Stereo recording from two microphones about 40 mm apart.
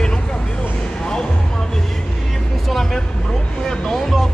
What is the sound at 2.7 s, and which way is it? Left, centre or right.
Vehicle, centre.